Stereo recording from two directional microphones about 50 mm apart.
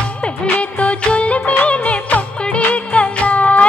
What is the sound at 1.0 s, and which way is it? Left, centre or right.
Music of bollywood, left.